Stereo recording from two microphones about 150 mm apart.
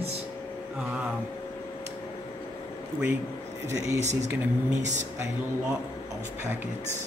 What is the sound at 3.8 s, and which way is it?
Speech, 20° right (ahead or behind).